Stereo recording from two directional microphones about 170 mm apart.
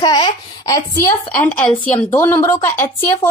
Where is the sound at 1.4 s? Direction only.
10° left (ahead or behind).